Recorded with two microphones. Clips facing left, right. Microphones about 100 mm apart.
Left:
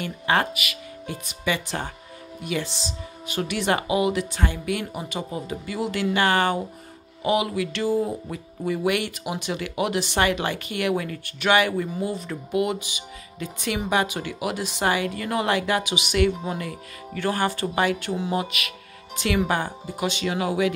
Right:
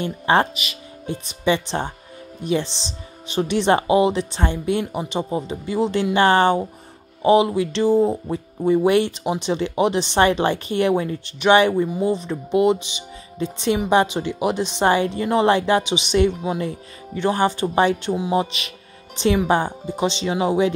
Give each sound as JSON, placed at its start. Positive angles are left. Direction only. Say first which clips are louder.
{"t": 0.0, "sound": "speech", "louder": "right 5 dB", "side_deg": -30}
{"t": 18.4, "sound": "speech", "louder": "right 4 dB", "side_deg": -25}